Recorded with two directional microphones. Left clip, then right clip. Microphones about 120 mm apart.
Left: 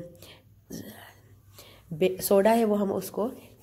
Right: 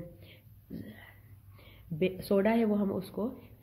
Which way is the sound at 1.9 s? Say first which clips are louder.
Left 7 dB; 35° left (ahead or behind).